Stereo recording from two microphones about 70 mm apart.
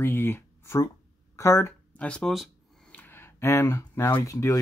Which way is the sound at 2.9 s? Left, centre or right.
Left.